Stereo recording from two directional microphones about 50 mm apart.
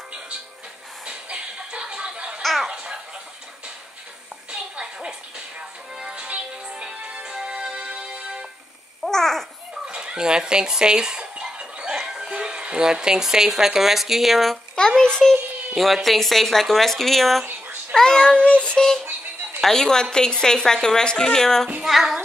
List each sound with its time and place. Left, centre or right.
1.0 s a sound: right
2.4 s a sound: centre
2.7 s baby laughter: centre
4.5 s music: right
9.0 s babbling: centre
9.8 s a sound: centre
12.1 s speech: centre
14.8 s a woman's voice: centre
15.7 s speech: centre
17.9 s meow: centre
19.6 s a woman's voice: centre
21.8 s speech: centre